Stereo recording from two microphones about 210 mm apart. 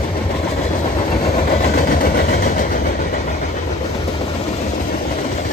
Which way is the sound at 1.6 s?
45° left (ahead or behind).